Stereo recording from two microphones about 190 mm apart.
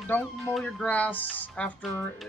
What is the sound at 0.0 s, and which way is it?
Speech, 5° left (ahead or behind).